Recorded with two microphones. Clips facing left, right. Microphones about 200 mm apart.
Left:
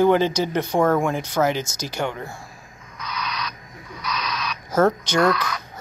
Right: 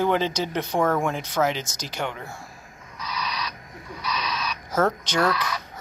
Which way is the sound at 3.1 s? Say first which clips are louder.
Left 1 dB; 30° right (ahead or behind).